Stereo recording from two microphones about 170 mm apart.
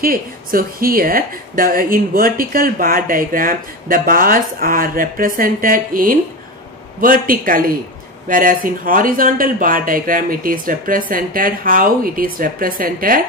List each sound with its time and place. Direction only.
0.0 s a woman's voice: 60° right (ahead or behind)